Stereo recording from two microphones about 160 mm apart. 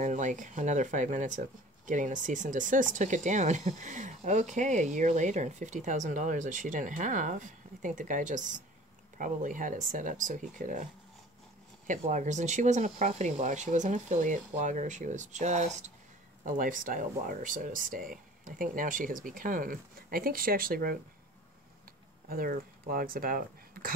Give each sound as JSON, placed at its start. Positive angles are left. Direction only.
{"t": 0.0, "sound": "speech", "side_deg": -50}
{"t": 12.1, "sound": "speech", "side_deg": -50}
{"t": 16.4, "sound": "speech", "side_deg": -55}
{"t": 22.3, "sound": "speech", "side_deg": -65}